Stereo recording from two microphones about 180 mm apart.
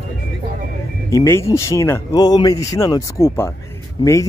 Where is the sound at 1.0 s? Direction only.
15° left (ahead or behind).